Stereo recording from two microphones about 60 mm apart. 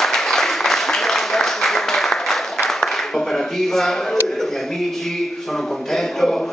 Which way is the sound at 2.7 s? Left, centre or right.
Centre.